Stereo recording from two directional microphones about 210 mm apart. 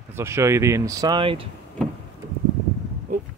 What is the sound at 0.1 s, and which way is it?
Speech, 15° right (ahead or behind).